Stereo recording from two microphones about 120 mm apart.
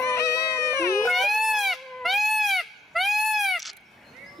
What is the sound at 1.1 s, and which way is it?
Goat, centre (ahead or behind).